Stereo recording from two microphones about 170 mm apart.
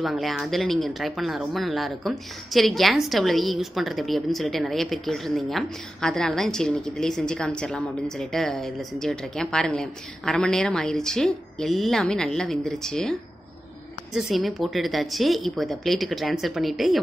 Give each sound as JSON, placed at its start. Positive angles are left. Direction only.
{"t": 0.0, "sound": "speech", "side_deg": 0}
{"t": 14.1, "sound": "speech", "side_deg": 0}